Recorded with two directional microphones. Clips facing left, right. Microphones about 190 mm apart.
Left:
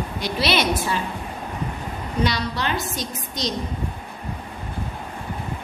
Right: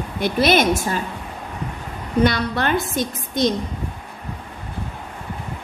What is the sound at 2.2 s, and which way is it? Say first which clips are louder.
A woman's voice: right 5 dB; 55° right (ahead or behind).